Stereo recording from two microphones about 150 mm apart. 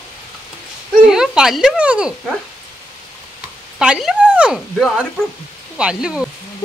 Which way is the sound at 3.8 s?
5° right (ahead or behind).